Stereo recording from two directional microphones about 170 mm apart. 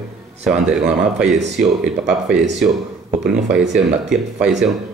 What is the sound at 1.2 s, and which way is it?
Speech, 45° right (ahead or behind).